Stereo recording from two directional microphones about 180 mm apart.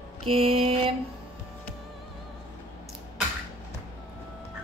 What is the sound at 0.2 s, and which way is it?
Mantra, 30° right (ahead or behind).